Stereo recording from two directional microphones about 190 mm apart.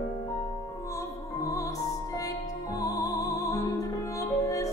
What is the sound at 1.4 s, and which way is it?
Music, 15° left (ahead or behind).